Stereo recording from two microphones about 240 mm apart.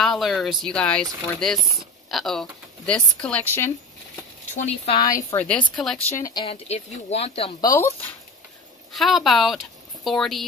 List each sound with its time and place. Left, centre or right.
0.0 s speech: centre
4.6 s a woman's voice: left
7.7 s a woman's voice: centre